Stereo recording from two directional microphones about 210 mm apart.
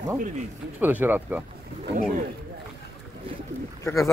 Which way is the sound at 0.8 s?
10° right (ahead or behind).